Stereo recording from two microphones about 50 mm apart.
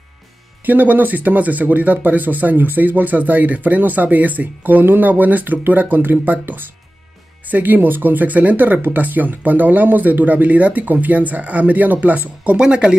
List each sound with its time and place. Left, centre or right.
0.7 s speech: right
12.5 s speech: centre